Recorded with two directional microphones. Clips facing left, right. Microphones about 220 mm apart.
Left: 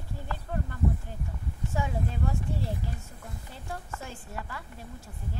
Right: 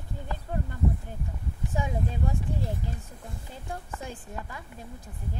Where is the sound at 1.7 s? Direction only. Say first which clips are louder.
Right 1 dB; 15° right (ahead or behind).